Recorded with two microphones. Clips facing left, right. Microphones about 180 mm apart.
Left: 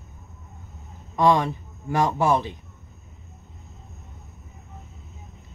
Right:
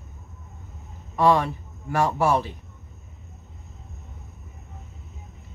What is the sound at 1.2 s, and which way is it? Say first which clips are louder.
Speech: even; 20° left (ahead or behind).